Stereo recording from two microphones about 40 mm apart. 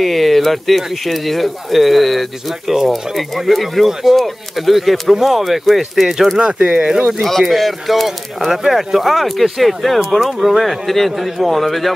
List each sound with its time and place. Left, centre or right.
0.0 s speech: centre
7.2 s speech: centre